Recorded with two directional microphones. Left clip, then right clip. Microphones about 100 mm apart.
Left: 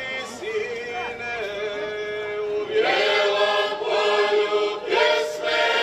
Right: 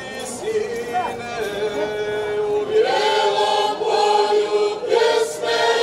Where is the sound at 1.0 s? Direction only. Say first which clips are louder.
Right 6 dB; 15° left (ahead or behind).